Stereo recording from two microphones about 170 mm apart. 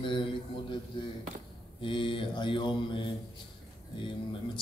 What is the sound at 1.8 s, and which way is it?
A man's voice, 30° left (ahead or behind).